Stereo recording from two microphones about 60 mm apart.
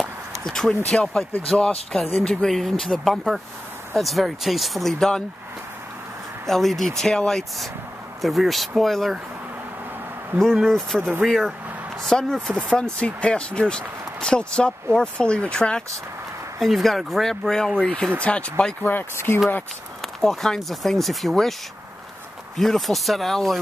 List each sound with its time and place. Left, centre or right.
0.4 s speech: centre
6.4 s speech: centre
10.4 s speech: centre
16.5 s speech: centre
17.7 s speech: centre
18.8 s speech: left
20.0 s speech: centre
22.6 s speech: centre